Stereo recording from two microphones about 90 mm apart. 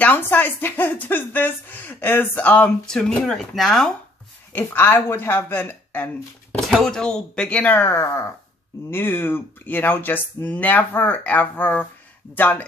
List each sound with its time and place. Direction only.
0.0 s a woman's voice: 20° left (ahead or behind); by 3.9 s centre (ahead or behind)
4.5 s a woman's voice: 20° left (ahead or behind)
6.7 s a woman's voice: 5° left (ahead or behind)